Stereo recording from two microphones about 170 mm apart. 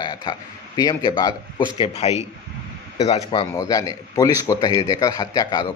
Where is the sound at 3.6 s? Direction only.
20° left (ahead or behind).